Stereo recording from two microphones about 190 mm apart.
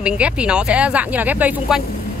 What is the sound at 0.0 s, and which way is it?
Speech, 5° right (ahead or behind).